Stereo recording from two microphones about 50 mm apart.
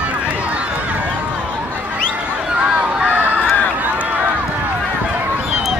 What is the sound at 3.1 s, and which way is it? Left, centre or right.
Run, right.